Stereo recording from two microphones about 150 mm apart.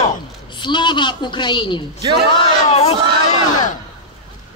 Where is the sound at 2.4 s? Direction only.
45° left (ahead or behind).